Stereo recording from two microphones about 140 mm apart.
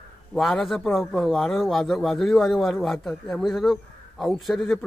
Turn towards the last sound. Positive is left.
turn(degrees=0)  # may be behind; listen again after turning